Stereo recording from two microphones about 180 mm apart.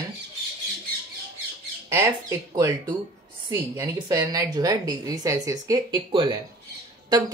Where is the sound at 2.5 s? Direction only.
20° right (ahead or behind).